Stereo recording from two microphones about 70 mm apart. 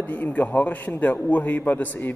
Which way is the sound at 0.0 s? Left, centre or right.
Left.